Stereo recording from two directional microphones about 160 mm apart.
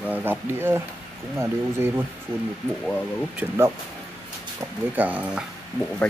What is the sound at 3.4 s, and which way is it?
Speech, 15° right (ahead or behind).